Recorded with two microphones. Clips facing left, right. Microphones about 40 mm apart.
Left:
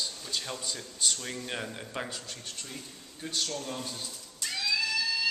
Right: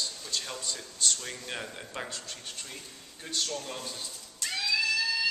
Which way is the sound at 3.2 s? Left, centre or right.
Centre.